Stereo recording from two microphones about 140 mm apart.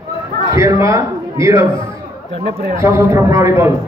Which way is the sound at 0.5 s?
20° right (ahead or behind).